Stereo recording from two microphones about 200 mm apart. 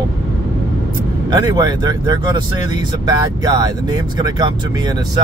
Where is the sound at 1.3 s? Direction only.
20° right (ahead or behind).